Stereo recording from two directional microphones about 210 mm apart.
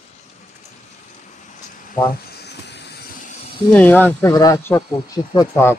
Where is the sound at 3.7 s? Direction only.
10° left (ahead or behind).